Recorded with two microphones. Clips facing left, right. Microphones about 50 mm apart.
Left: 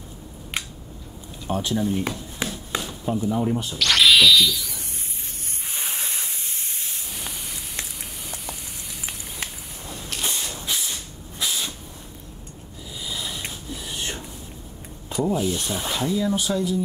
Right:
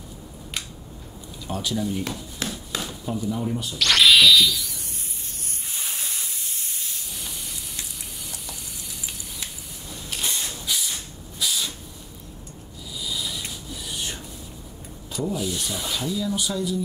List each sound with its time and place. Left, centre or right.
1.5 s chop: left
3.1 s speech: left
3.7 s a sound: centre
5.8 s hiss: left
7.2 s spray: left
9.0 s a sound: left
11.3 s hiss: left
13.0 s a sound: left
15.0 s speech: left